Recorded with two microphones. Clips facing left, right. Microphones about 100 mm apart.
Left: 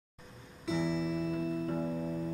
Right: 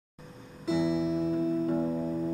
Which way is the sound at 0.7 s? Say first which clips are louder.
Right 5 dB; 20° right (ahead or behind).